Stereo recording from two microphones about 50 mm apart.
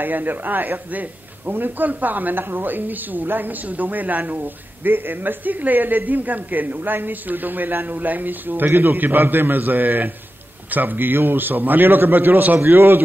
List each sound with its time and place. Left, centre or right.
0.0 s a man's voice: right